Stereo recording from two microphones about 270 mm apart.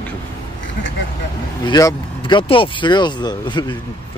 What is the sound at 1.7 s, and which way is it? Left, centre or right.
Speech, centre.